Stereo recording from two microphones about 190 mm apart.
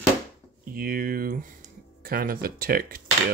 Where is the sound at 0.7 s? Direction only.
50° right (ahead or behind).